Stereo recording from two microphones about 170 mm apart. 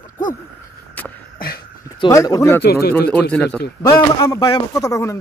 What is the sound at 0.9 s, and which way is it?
Beatboxing, 10° left (ahead or behind).